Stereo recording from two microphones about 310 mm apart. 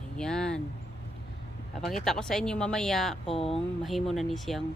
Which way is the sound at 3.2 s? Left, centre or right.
Centre.